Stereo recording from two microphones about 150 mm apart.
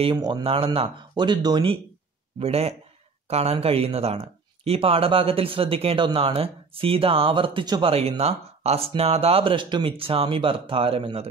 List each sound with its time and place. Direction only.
0.0 s speech: 30° right (ahead or behind)
2.3 s a man's voice: 40° right (ahead or behind)
7.9 s speech: 40° right (ahead or behind)